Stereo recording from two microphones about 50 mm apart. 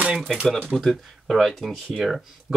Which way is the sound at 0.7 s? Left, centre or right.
Centre.